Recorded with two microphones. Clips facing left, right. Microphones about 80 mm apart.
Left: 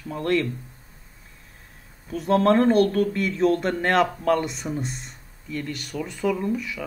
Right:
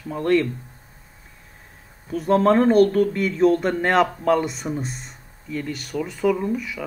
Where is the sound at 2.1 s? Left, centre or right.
Centre.